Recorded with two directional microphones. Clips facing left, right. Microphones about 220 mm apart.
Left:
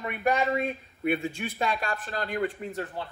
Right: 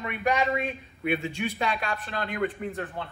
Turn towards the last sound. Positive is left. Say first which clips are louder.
# right 1 dB
turn(degrees=0)  # may be behind; listen again after turning